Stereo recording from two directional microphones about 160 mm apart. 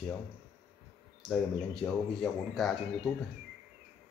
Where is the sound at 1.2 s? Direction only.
5° left (ahead or behind).